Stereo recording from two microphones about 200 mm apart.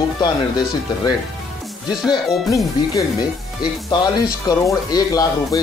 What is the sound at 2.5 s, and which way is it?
Speech, 15° left (ahead or behind).